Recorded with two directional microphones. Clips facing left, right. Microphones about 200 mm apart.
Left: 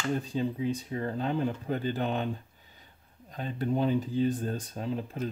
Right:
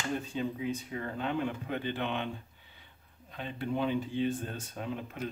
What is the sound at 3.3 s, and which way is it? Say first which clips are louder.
Speech: left 4 dB; 40° left (ahead or behind).